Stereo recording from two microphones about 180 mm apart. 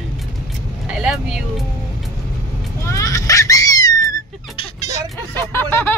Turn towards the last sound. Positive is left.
turn(degrees=10)  # may be behind; listen again after turning